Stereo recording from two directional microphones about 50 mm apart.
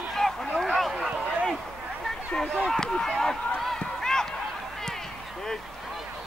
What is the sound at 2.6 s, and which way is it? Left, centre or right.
Chop, centre.